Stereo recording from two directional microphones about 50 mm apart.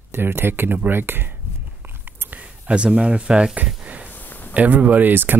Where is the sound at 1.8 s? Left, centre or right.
Right.